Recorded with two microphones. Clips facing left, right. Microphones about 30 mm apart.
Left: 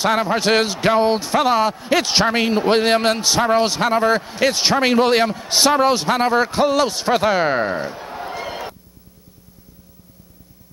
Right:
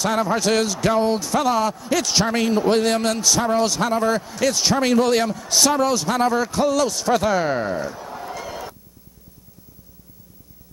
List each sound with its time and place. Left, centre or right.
0.0 s a man's voice: left